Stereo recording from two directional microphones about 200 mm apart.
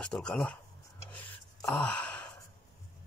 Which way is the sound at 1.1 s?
10° left (ahead or behind).